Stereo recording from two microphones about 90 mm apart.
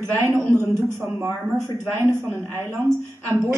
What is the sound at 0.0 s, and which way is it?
Speech, 30° right (ahead or behind).